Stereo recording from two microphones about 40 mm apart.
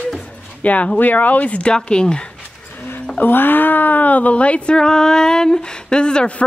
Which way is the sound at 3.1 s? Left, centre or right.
Left.